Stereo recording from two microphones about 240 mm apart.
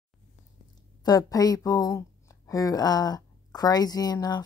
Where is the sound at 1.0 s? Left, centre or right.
Centre.